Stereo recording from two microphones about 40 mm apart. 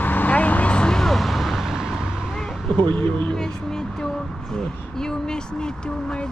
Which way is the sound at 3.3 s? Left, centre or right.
Centre.